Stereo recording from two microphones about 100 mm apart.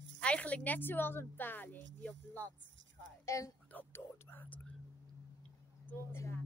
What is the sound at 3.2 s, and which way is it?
Speech, 30° left (ahead or behind).